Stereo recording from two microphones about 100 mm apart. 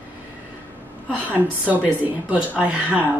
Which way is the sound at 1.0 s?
15° right (ahead or behind).